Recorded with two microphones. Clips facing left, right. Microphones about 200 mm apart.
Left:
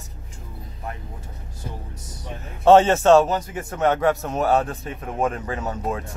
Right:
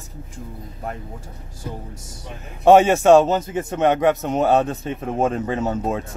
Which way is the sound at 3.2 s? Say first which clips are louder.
Right 4 dB; 25° right (ahead or behind).